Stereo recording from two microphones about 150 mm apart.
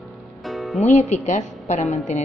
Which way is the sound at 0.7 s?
50° left (ahead or behind).